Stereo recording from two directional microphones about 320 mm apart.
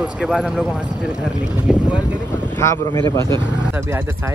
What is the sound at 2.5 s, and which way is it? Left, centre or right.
Speech, centre.